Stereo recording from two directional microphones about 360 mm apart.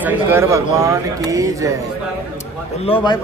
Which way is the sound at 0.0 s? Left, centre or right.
Centre.